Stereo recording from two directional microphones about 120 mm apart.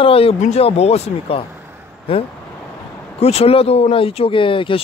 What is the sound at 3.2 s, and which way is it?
Speech, 60° left (ahead or behind).